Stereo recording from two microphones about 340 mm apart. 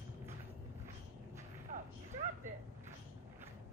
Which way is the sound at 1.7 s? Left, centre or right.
Right.